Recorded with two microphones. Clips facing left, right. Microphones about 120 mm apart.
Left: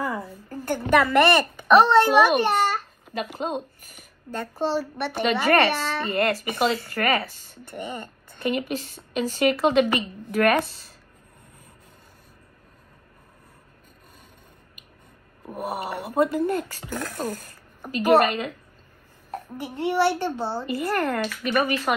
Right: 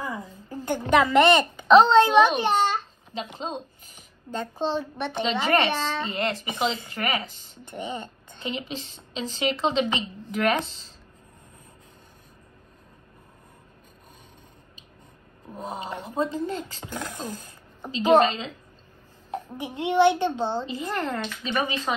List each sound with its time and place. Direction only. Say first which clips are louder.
0.0 s a sound: left 4 dB; 20° right (ahead or behind)
0.7 s a child's voice: even; 20° right (ahead or behind)
2.4 s babbling: even; 20° right (ahead or behind)
3.8 s a child's voice: left 2 dB; 20° right (ahead or behind)
15.5 s speech: left 4 dB; 10° left (ahead or behind)
16.4 s a child's voice: left 6 dB; 20° right (ahead or behind)